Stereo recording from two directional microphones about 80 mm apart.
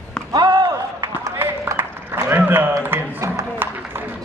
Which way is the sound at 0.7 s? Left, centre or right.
Right.